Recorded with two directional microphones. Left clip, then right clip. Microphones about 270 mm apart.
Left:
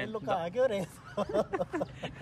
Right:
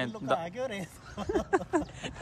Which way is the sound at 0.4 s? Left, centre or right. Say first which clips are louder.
Left 6 dB; centre.